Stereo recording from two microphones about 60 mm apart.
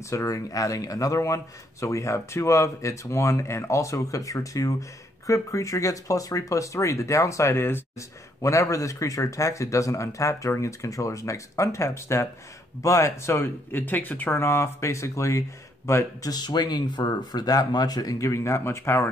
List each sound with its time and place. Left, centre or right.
0.1 s speech: left
8.4 s speech: left
16.2 s speech: left
17.3 s speech: left